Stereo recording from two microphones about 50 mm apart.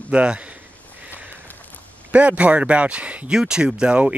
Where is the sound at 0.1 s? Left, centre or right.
Right.